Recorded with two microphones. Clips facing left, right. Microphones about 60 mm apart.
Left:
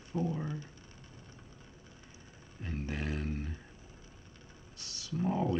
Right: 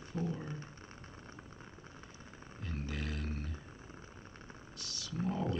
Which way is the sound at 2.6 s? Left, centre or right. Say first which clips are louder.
Left 4 dB; left.